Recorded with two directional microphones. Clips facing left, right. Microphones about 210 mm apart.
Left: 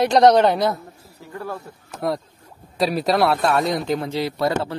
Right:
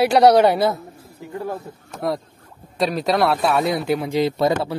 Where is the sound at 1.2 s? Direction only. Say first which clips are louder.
Right 3 dB; 20° right (ahead or behind).